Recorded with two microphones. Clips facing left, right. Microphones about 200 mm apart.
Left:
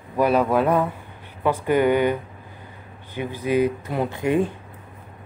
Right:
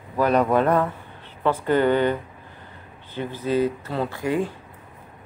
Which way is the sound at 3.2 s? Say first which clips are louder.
Left 1 dB; 15° left (ahead or behind).